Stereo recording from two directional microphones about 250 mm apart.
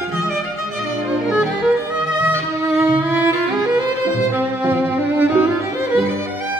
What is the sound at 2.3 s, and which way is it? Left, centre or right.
Violin, centre.